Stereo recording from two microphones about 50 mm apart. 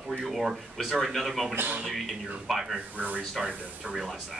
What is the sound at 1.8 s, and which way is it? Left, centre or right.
Speech, centre.